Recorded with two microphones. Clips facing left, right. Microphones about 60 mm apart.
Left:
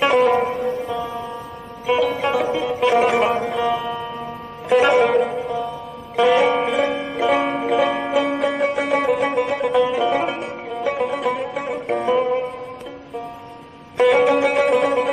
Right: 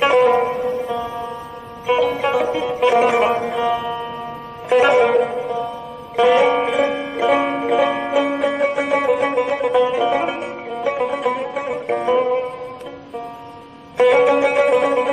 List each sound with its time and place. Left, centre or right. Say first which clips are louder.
0.0 s music: right 2 dB; centre
6.9 s music: right 1 dB; centre
7.2 s banjo: right 2 dB; centre
9.4 s music: right 2 dB; centre
13.9 s music: right 2 dB; centre